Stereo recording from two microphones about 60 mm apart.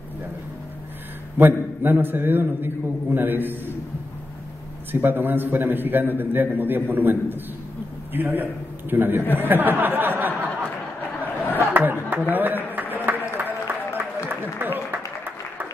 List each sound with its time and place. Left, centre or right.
1.4 s a man's voice: right
4.9 s a man's voice: right
11.6 s a sound: right
12.9 s applause: right